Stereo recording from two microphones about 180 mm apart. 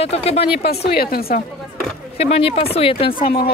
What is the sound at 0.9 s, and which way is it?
Speech, 60° left (ahead or behind).